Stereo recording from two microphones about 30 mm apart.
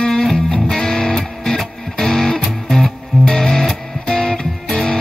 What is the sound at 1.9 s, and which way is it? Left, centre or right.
Music, centre.